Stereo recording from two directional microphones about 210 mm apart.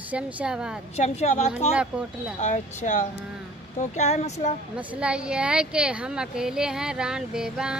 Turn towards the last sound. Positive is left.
turn(degrees=-5)  # may be behind; listen again after turning